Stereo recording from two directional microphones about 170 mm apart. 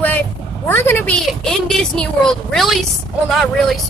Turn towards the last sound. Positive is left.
turn(degrees=0)  # may be behind; listen again after turning